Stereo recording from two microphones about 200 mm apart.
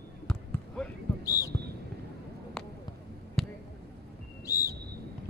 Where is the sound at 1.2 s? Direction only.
15° left (ahead or behind).